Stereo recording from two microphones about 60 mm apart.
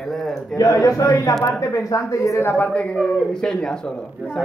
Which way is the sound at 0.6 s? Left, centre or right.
Left.